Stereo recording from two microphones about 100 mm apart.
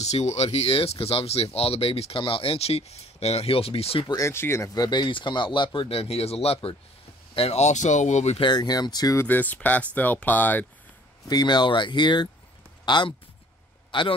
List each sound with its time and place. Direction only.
0.0 s speech: 90° left
4.3 s speech: 25° left (ahead or behind)
4.7 s speech: 45° left (ahead or behind)
5.9 s speech: 80° left
7.8 s speech: 90° left
8.5 s speech: 45° left (ahead or behind)
9.3 s speech: 15° left (ahead or behind)
11.2 s speech: 45° left (ahead or behind)